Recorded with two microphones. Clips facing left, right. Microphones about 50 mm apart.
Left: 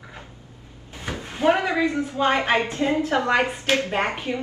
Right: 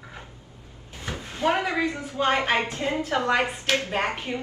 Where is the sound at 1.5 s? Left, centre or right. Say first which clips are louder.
Left 5 dB; left.